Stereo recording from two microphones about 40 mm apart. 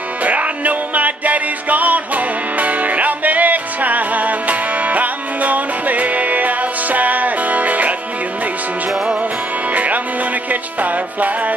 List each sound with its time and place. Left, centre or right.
0.2 s music: right
8.9 s music: centre
9.7 s music: right